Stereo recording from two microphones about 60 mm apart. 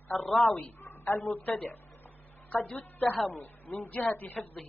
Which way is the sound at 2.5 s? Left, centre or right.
Left.